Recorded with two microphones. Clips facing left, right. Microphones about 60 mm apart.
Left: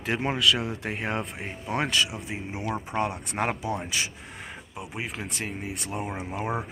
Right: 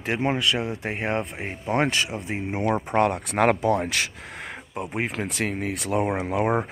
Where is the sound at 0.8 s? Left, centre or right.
Right.